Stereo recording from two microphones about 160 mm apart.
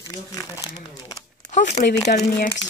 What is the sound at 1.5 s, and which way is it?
Speech, 45° left (ahead or behind).